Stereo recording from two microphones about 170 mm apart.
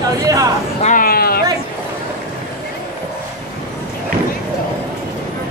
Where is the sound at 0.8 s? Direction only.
55° left (ahead or behind).